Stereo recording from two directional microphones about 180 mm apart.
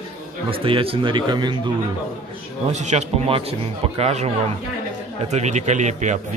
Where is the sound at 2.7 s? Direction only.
40° right (ahead or behind).